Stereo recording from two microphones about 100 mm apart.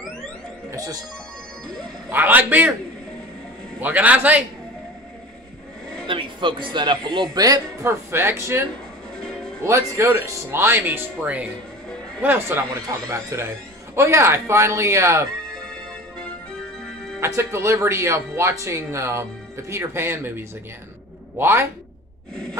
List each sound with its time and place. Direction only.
0.7 s speech: 35° right (ahead or behind)
2.0 s speech: 20° right (ahead or behind)
3.8 s a man's voice: 15° right (ahead or behind)
6.0 s speech: 55° right (ahead or behind); by 7.6 s 40° right (ahead or behind)
7.8 s speech: 25° right (ahead or behind)
15.4 s music: 5° left (ahead or behind)
17.2 s speech: 25° right (ahead or behind)